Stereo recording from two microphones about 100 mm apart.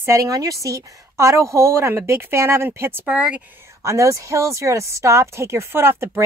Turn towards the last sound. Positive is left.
turn(degrees=-25)  # may be behind; listen again after turning